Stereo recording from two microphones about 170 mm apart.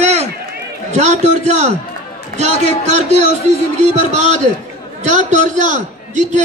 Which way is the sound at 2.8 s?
40° right (ahead or behind).